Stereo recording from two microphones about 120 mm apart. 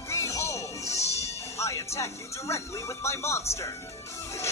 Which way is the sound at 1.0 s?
25° left (ahead or behind).